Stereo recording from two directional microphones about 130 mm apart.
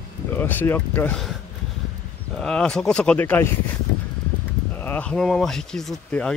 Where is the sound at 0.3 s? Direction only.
15° left (ahead or behind).